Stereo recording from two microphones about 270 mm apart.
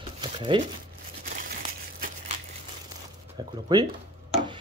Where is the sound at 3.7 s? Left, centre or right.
Centre.